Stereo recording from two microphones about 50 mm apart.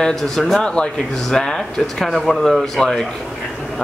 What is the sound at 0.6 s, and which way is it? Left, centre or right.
A man's voice, centre.